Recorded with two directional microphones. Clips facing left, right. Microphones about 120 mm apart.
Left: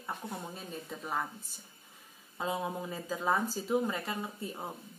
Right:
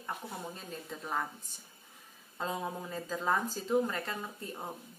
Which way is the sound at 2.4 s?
10° left (ahead or behind).